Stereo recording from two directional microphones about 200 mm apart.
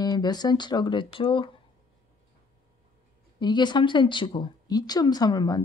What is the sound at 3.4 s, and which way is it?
Speech, 20° left (ahead or behind).